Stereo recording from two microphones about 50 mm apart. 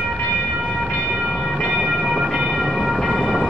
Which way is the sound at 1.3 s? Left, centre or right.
Centre.